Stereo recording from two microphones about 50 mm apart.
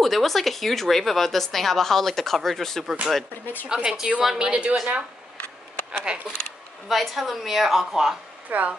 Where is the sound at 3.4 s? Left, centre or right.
Left.